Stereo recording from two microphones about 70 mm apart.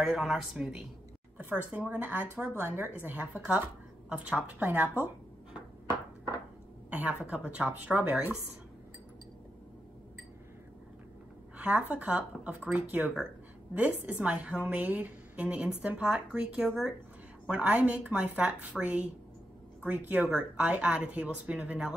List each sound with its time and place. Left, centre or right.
0.0 s a woman's voice: centre
1.4 s speech: right
6.9 s speech: centre
11.5 s a woman's voice: right